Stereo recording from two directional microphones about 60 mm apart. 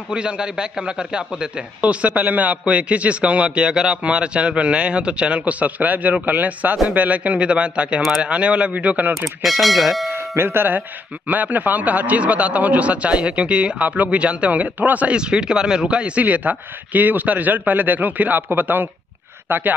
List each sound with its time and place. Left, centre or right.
0.1 s a man's voice: centre
9.1 s speech: centre
10.1 s speech: right
11.2 s a man's voice: right
15.1 s a man's voice: centre; by 19.6 s right